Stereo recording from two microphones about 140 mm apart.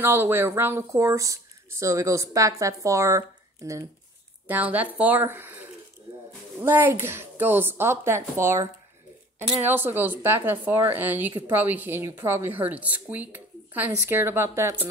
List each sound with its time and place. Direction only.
0.0 s speech: 15° right (ahead or behind)
4.5 s a woman's voice: 10° right (ahead or behind)